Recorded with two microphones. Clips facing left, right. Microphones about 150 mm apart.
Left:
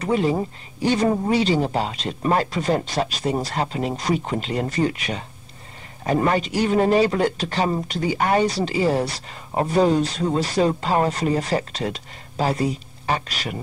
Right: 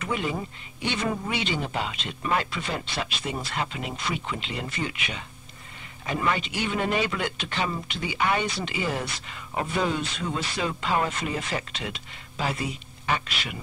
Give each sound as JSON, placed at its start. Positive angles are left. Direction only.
{"t": 0.0, "sound": "a man's voice", "side_deg": 35}